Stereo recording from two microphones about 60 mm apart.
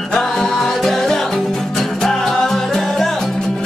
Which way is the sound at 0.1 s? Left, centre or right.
Centre.